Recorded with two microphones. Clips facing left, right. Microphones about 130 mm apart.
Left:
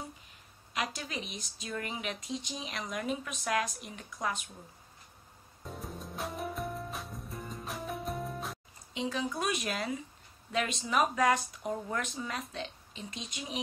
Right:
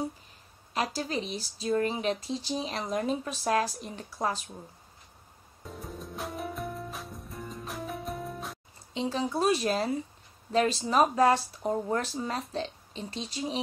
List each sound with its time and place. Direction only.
0.7 s speech: 35° right (ahead or behind)
5.7 s music: centre (ahead or behind)
8.9 s speech: 30° right (ahead or behind)